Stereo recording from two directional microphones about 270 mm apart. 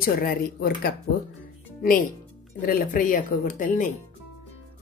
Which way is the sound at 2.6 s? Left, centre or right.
Left.